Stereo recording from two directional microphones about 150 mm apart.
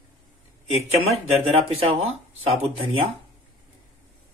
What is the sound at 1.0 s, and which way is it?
Speech, 40° right (ahead or behind).